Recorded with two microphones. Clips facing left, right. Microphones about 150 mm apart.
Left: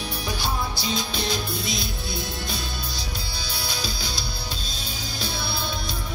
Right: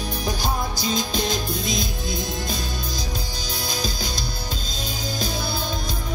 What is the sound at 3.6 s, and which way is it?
Music, 45° right (ahead or behind).